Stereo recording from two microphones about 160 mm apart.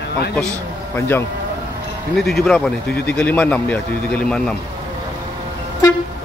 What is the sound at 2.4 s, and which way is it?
Speech, 5° left (ahead or behind).